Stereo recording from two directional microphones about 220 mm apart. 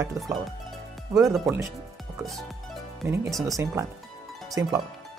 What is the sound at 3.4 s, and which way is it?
Speech, 15° right (ahead or behind).